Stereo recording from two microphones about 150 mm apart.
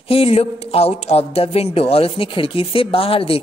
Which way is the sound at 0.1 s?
40° left (ahead or behind).